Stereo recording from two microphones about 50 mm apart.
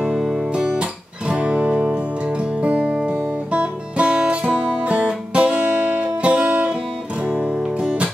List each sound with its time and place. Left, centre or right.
0.0 s music: centre